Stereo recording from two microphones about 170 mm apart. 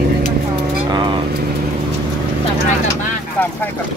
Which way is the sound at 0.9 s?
25° right (ahead or behind).